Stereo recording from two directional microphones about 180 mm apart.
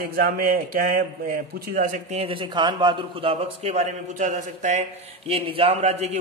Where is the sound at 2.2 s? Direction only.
30° right (ahead or behind).